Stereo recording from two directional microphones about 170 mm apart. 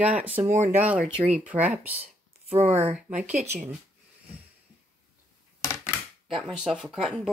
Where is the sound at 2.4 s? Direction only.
35° right (ahead or behind).